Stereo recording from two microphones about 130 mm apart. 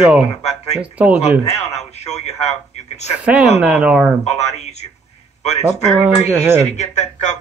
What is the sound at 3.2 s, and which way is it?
Speech, 5° right (ahead or behind).